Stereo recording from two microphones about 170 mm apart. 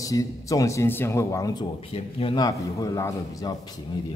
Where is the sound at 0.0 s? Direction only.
20° left (ahead or behind).